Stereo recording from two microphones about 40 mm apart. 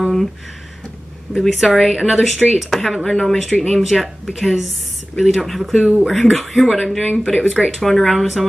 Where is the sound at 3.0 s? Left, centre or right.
Centre.